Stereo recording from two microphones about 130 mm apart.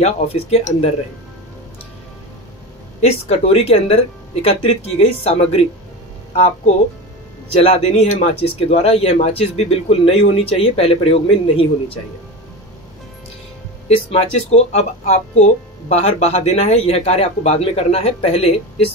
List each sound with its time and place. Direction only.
0.0 s speech: 50° left (ahead or behind)
3.0 s speech: 50° left (ahead or behind)
13.8 s speech: 55° left (ahead or behind)